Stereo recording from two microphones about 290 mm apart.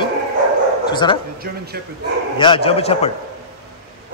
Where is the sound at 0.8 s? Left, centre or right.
Centre.